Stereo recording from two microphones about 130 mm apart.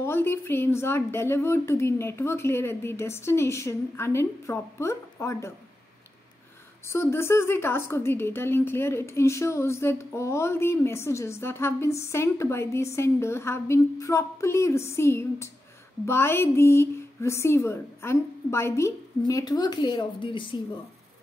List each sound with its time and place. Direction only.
0.0 s a woman's voice: 20° left (ahead or behind)
6.9 s a woman's voice: 20° left (ahead or behind); by 20.6 s 40° left (ahead or behind)